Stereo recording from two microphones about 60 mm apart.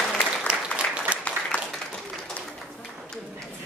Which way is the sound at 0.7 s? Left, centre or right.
Left.